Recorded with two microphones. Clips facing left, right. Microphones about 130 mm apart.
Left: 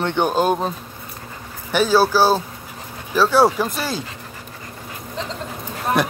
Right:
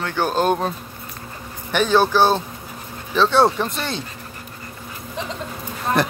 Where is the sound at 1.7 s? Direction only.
5° left (ahead or behind).